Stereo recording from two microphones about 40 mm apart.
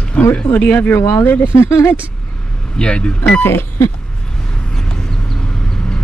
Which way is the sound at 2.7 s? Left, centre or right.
Left.